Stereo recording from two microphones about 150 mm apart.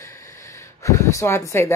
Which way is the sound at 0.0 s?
20° left (ahead or behind).